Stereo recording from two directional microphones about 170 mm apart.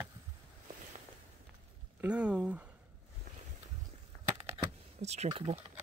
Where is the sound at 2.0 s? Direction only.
5° right (ahead or behind).